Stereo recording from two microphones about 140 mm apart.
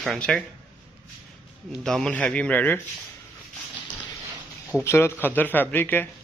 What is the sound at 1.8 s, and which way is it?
Speech, 5° left (ahead or behind).